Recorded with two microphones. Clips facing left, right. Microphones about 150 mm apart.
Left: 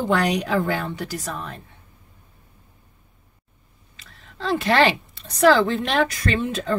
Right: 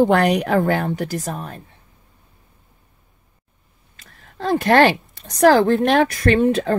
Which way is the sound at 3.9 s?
50° right (ahead or behind).